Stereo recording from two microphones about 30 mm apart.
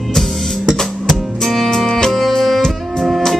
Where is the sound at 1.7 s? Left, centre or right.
Centre.